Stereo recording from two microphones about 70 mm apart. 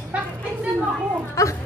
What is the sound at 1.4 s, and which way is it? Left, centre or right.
Music, left.